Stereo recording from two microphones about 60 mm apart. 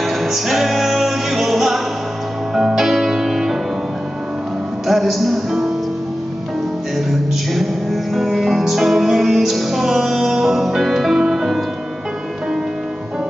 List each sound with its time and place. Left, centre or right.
0.0 s music: centre
4.8 s music: centre
7.5 s music: centre